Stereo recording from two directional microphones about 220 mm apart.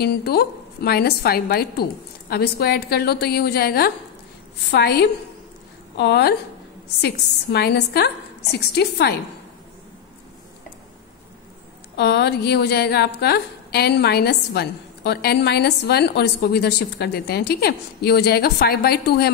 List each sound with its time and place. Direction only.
0.0 s a woman's voice: 45° left (ahead or behind)
12.0 s a woman's voice: 50° left (ahead or behind)